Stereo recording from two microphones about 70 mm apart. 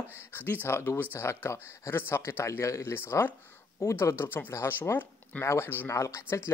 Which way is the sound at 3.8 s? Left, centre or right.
Left.